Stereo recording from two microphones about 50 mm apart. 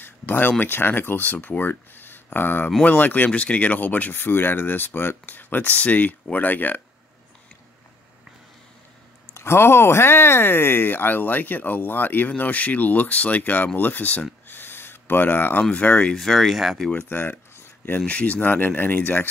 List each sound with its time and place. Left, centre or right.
0.0 s speech: left
3.3 s speech: left
4.1 s speech: left
9.3 s speech: left
14.5 s a sound: left
15.7 s speech: left
16.1 s speech: centre
17.1 s speech: left
18.0 s speech: left